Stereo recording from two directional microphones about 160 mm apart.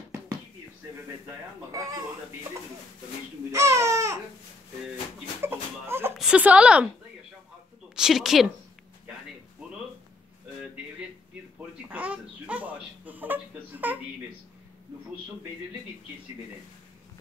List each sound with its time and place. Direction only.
1.7 s speech: 20° right (ahead or behind)
3.5 s baby cry: 20° right (ahead or behind)
5.4 s a sound: 15° right (ahead or behind)
6.1 s speech: 5° right (ahead or behind)
7.9 s a woman's voice: 5° right (ahead or behind)
11.9 s speech: 10° right (ahead or behind)